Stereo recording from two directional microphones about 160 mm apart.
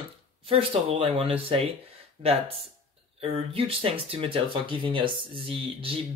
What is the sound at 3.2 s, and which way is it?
Speech, 35° right (ahead or behind).